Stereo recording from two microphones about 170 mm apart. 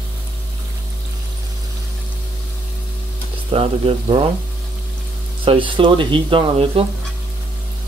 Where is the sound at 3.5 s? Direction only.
35° right (ahead or behind).